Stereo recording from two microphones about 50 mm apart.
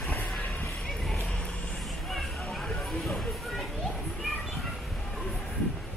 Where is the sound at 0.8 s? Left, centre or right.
Centre.